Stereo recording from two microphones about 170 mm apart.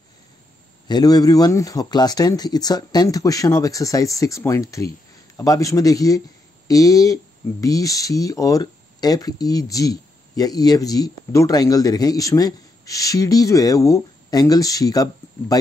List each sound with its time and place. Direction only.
0.8 s speech: 25° left (ahead or behind)